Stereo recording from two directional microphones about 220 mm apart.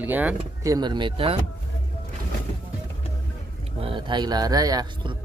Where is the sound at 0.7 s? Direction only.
20° right (ahead or behind).